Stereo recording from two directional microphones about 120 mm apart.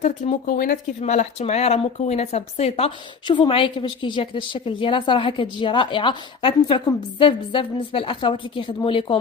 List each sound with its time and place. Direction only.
0.0 s speech: 90° left
1.4 s speech: 60° left (ahead or behind)
3.3 s a woman's voice: 45° left (ahead or behind)